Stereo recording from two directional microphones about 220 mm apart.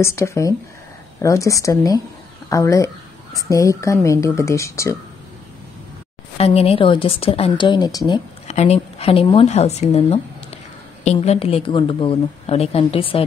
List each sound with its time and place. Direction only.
0.0 s speech: 15° left (ahead or behind)
6.3 s a woman's voice: 25° left (ahead or behind)
8.1 s a woman's voice: 30° left (ahead or behind)